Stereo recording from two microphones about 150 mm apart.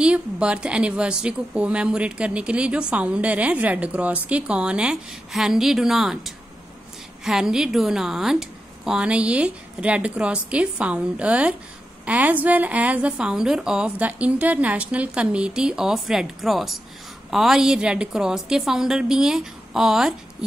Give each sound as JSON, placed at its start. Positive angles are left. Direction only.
{"t": 0.0, "sound": "a woman's voice", "side_deg": -5}